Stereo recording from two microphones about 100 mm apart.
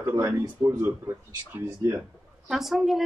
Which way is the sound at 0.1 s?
30° right (ahead or behind).